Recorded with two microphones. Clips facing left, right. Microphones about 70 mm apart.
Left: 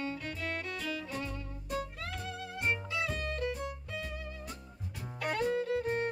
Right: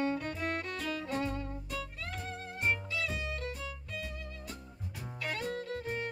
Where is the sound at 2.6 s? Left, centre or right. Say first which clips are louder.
Even; centre.